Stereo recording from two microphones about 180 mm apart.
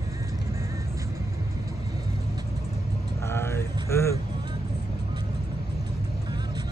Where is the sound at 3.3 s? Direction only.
15° left (ahead or behind).